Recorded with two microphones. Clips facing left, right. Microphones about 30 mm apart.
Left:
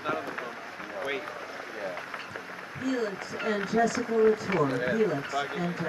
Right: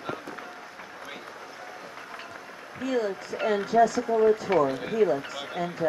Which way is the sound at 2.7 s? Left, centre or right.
Centre.